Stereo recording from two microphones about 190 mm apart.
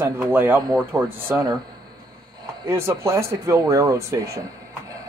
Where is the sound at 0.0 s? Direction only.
10° right (ahead or behind).